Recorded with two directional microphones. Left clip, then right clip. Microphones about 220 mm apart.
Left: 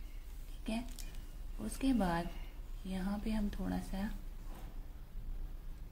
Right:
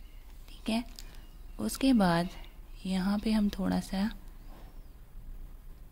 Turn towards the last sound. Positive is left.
turn(degrees=-45)  # may be behind; listen again after turning